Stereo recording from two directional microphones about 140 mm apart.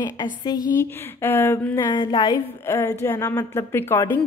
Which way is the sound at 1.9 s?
35° left (ahead or behind).